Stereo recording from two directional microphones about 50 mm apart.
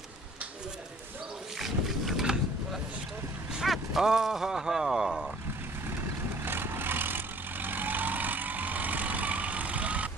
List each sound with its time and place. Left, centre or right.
1.6 s boat: centre
3.6 s speech: centre
6.4 s vehicle: right